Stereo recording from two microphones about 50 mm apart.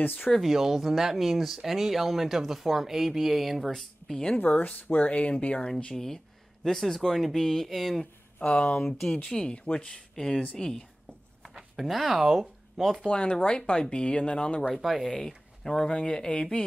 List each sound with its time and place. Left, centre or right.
0.0 s speech: left
0.4 s speech: centre
3.7 s speech: centre
4.4 s speech: left
5.9 s speech: centre
8.4 s speech: left
9.8 s speech: centre
11.4 s speech: centre
13.1 s speech: left
14.7 s speech: centre; by 16.6 s left